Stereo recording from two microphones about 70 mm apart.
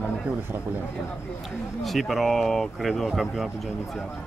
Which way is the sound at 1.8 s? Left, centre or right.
Centre.